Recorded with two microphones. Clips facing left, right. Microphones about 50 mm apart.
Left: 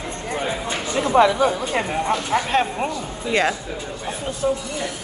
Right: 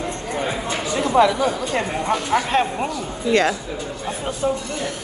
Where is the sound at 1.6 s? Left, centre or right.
Centre.